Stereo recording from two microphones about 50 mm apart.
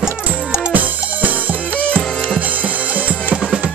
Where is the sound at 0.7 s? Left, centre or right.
Right.